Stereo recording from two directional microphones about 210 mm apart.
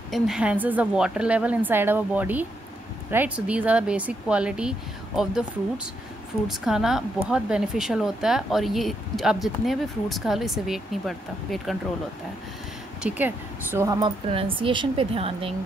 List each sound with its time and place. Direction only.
0.1 s a woman's voice: 5° right (ahead or behind)
6.4 s speech: centre (ahead or behind)
13.0 s speech: 10° right (ahead or behind); by 15.5 s 25° right (ahead or behind)